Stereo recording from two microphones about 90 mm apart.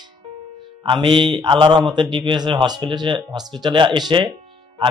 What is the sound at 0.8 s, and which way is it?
Speech, 70° right (ahead or behind).